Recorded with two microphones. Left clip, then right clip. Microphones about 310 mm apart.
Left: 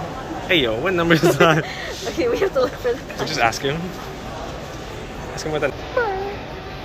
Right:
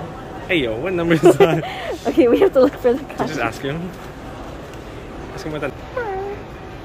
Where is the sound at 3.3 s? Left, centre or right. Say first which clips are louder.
Left 8 dB; centre.